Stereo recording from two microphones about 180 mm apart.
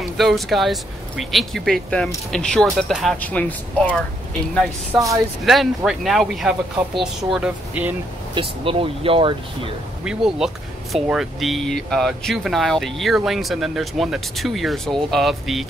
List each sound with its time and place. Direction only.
0.0 s speech: centre (ahead or behind)
5.1 s speech: centre (ahead or behind)
8.4 s speech: 30° right (ahead or behind)
10.0 s speech: centre (ahead or behind)